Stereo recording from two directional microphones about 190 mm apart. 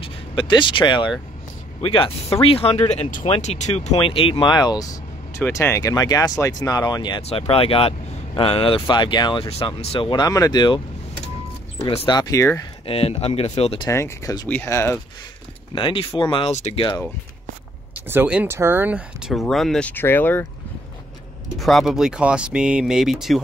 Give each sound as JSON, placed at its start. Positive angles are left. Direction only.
{"t": 0.0, "sound": "speech", "side_deg": 25}
{"t": 11.9, "sound": "speech", "side_deg": 25}
{"t": 12.8, "sound": "speech", "side_deg": 30}
{"t": 13.8, "sound": "speech", "side_deg": 15}
{"t": 15.7, "sound": "speech", "side_deg": 30}
{"t": 18.0, "sound": "speech", "side_deg": -10}
{"t": 21.5, "sound": "speech", "side_deg": 0}